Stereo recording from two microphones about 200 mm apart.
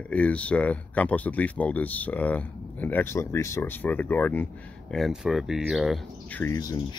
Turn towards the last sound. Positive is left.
turn(degrees=15)  # may be behind; listen again after turning